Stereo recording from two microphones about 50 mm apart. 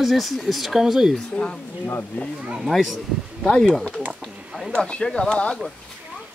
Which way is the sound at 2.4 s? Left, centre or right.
Centre.